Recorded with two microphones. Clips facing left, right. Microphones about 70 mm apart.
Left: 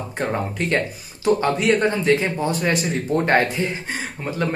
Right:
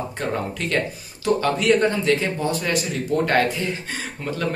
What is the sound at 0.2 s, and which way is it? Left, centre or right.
Speech, left.